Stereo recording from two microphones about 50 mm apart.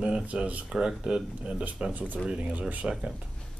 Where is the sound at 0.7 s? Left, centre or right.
Centre.